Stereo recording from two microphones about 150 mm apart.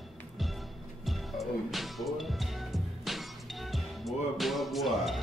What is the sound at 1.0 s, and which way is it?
Music, centre (ahead or behind).